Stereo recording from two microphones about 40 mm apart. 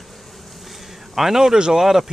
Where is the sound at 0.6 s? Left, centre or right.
Centre.